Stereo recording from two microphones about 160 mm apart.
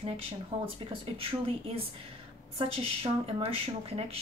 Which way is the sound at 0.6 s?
35° right (ahead or behind).